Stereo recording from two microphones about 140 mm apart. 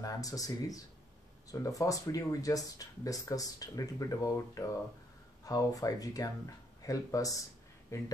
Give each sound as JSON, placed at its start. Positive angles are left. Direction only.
{"t": 0.0, "sound": "speech", "side_deg": 25}